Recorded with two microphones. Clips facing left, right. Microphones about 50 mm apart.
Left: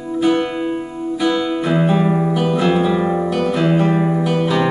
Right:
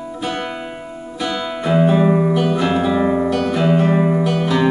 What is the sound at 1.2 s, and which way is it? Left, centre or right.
Music, centre.